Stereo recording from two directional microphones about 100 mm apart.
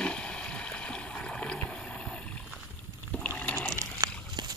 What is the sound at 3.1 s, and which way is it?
Rowboat, 15° left (ahead or behind).